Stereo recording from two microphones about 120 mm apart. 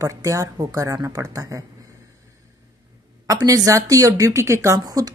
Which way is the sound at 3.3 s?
30° right (ahead or behind).